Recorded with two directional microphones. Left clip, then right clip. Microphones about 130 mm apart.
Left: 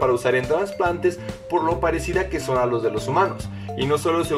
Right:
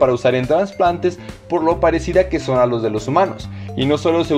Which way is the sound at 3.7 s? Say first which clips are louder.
Right 5 dB; 30° right (ahead or behind).